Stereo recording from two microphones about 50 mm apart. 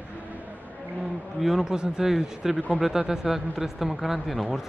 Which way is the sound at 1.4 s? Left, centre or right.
Centre.